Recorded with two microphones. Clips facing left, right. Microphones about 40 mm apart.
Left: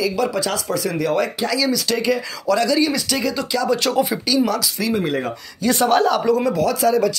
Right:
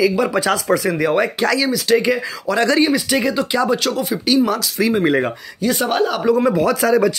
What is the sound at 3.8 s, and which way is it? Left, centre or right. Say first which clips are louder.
Speech: left 1 dB; centre.